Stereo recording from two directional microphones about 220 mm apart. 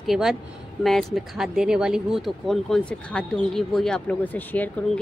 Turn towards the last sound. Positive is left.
turn(degrees=5)  # may be behind; listen again after turning